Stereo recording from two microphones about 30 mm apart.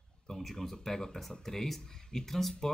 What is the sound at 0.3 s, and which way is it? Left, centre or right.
Speech, centre.